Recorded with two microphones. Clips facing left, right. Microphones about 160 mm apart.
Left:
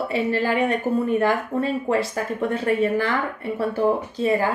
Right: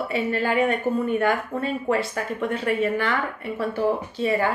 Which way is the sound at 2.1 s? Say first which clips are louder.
Left 2 dB; 35° left (ahead or behind).